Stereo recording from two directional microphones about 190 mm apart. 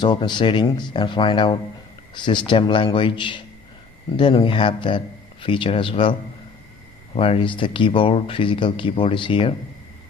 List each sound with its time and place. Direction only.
0.0 s speech: 25° left (ahead or behind)
7.2 s speech: 30° left (ahead or behind)